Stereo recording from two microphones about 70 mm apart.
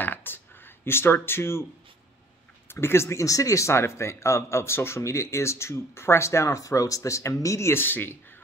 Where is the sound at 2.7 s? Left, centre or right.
Left.